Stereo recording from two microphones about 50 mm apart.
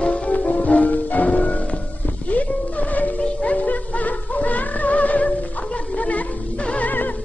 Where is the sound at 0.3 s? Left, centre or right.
Left.